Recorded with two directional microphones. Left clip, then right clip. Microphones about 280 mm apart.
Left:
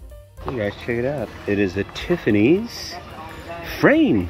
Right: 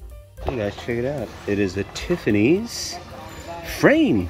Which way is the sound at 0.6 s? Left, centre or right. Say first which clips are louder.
Left 3 dB; centre.